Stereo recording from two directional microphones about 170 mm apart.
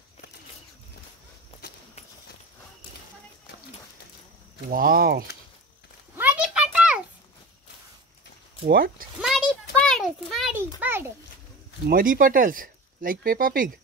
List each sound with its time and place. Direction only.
4.6 s speech: 55° right (ahead or behind)
6.1 s a sound: 5° right (ahead or behind)
8.6 s speech: 60° right (ahead or behind)
9.2 s a sound: centre (ahead or behind)
10.8 s a child's voice: 15° right (ahead or behind)
11.9 s speech: 55° right (ahead or behind)